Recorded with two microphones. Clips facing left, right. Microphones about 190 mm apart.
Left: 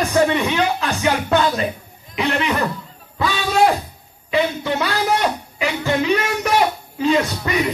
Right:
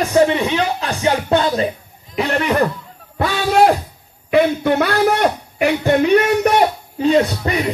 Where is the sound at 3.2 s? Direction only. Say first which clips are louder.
Right 3 dB; 60° right (ahead or behind).